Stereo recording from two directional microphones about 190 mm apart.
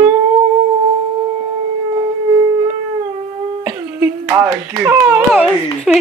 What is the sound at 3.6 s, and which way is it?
Speech, 10° right (ahead or behind).